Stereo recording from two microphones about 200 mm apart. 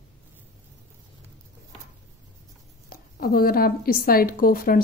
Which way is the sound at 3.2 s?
50° left (ahead or behind).